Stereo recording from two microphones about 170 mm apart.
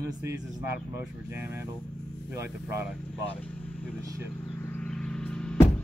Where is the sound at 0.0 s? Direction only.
20° right (ahead or behind).